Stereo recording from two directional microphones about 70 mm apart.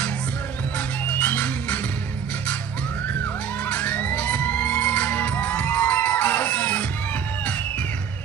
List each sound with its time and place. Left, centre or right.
0.7 s music: left
3.6 s music: left